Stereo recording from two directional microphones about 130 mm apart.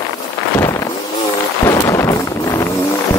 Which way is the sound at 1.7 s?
20° left (ahead or behind).